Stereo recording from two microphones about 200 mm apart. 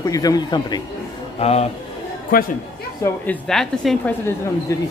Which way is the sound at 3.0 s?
5° left (ahead or behind).